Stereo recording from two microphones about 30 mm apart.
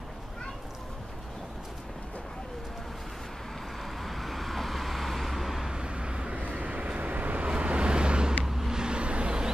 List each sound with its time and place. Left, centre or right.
3.8 s vehicle: centre
5.7 s vehicle: right
6.4 s vehicle: right
7.4 s vehicle: right
8.5 s vehicle: centre
8.7 s vehicle: right